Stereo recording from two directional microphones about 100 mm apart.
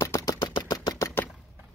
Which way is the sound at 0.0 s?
35° left (ahead or behind).